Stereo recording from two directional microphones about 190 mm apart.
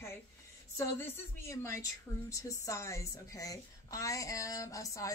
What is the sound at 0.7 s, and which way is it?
A woman's voice, 15° left (ahead or behind).